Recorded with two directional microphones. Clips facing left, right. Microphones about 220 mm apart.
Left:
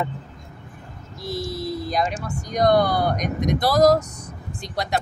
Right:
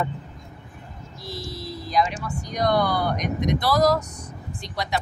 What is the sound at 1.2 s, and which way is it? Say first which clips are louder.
Speech: left 7 dB; 50° left (ahead or behind).